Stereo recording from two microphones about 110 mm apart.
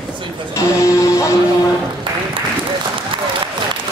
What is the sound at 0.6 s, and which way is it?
Music, 30° left (ahead or behind).